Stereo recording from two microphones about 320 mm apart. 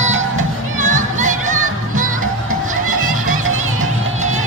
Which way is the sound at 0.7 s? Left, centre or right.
Right.